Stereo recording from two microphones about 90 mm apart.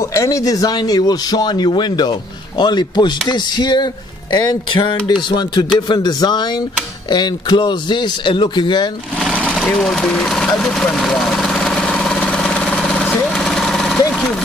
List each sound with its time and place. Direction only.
0.1 s speech: 35° left (ahead or behind); by 8.8 s 60° left (ahead or behind)
9.3 s sewing machine: 15° left (ahead or behind)
9.8 s vehicle: 10° left (ahead or behind)